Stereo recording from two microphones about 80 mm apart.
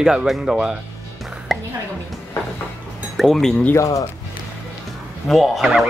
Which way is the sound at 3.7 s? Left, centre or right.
Left.